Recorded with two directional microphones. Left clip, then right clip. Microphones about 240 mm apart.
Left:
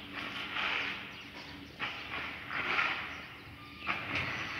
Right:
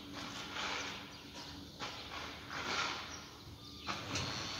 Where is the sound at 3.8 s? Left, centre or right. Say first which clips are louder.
Left 6 dB; right.